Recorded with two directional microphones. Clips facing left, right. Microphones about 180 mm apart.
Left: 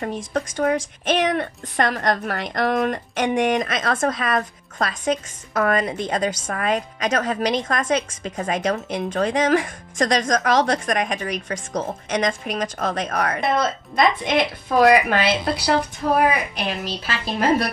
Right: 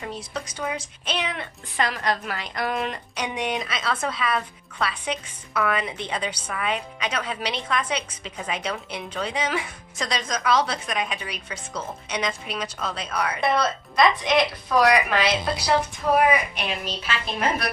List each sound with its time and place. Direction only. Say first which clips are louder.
0.0 s a woman's voice: left 7 dB; 50° left (ahead or behind)
16.5 s a woman's voice: left 3 dB; 35° left (ahead or behind)